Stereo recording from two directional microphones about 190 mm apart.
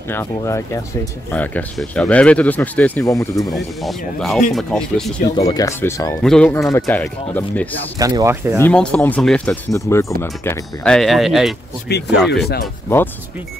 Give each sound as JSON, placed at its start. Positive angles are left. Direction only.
{"t": 0.1, "sound": "speech", "side_deg": 15}
{"t": 3.5, "sound": "speech", "side_deg": 0}
{"t": 5.3, "sound": "speech", "side_deg": 20}
{"t": 6.2, "sound": "speech", "side_deg": 5}
{"t": 8.0, "sound": "speech", "side_deg": -20}
{"t": 8.6, "sound": "speech", "side_deg": 5}
{"t": 11.9, "sound": "speech", "side_deg": 55}